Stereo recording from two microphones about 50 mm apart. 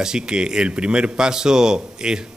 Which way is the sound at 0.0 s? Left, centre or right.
Centre.